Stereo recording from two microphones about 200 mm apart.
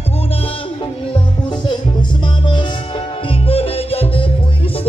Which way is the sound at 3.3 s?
30° left (ahead or behind).